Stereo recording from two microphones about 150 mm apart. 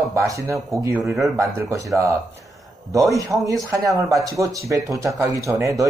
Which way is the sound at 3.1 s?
20° right (ahead or behind).